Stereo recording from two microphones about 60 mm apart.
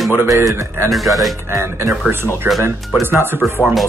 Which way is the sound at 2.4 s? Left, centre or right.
Right.